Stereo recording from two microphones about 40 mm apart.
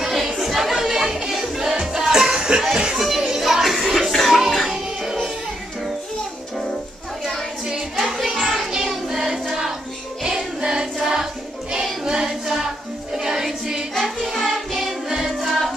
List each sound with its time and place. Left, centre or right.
0.0 s music: centre
4.4 s music: centre
7.6 s music: centre
8.0 s music: centre
8.7 s child singing: centre
10.2 s music: centre
14.0 s music: centre
15.0 s music: centre